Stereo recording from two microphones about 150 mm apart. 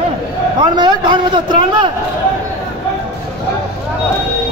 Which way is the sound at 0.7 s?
30° right (ahead or behind).